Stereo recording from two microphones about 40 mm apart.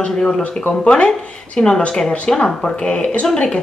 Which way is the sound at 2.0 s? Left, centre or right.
Centre.